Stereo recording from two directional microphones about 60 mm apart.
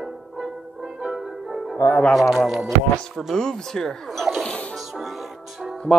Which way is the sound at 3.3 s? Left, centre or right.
Centre.